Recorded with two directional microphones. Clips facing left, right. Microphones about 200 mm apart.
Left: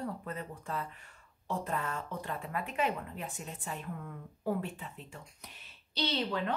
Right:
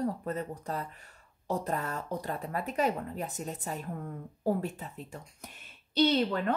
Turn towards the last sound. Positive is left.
turn(degrees=-50)  # may be behind; listen again after turning